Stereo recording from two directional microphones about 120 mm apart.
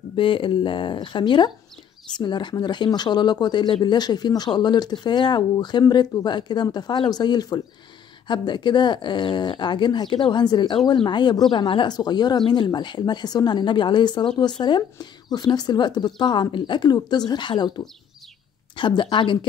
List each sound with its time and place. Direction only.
0.1 s speech: 45° left (ahead or behind)